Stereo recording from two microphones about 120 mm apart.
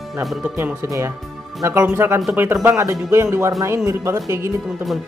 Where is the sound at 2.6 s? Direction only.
25° right (ahead or behind).